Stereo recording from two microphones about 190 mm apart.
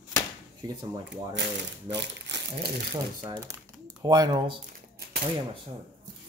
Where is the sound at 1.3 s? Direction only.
65° right (ahead or behind).